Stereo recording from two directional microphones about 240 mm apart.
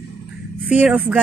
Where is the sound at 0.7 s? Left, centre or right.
Centre.